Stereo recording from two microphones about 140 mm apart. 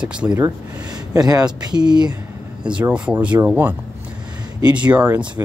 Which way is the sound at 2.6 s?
10° right (ahead or behind).